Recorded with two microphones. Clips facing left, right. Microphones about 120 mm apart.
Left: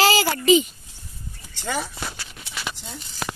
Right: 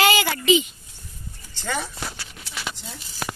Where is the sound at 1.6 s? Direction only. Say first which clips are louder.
Left 1 dB; 5° left (ahead or behind).